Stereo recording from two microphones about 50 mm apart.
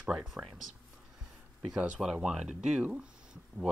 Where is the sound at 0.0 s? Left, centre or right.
Centre.